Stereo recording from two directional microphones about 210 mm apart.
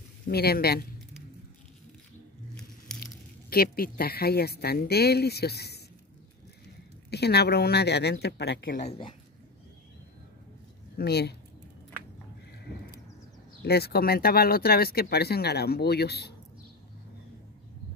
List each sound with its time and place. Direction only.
0.3 s speech: 50° left (ahead or behind)
3.0 s speech: 45° left (ahead or behind)
7.1 s speech: 50° left (ahead or behind)
8.7 s a woman's voice: 30° left (ahead or behind)
11.0 s speech: 50° left (ahead or behind)
13.6 s speech: 50° left (ahead or behind)